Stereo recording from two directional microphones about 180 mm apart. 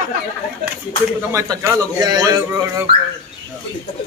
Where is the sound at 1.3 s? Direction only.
15° right (ahead or behind).